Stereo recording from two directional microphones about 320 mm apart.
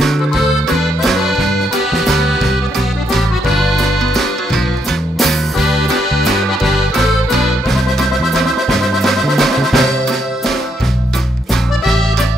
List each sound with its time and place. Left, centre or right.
0.7 s accordion: centre
2.0 s music: centre
7.0 s music: centre